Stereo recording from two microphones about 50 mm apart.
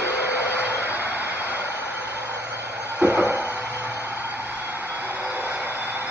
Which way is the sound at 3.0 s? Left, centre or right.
Right.